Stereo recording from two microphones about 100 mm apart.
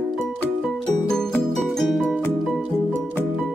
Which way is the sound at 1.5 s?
5° left (ahead or behind).